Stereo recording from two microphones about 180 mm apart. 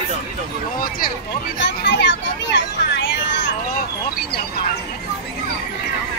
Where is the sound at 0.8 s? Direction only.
55° left (ahead or behind).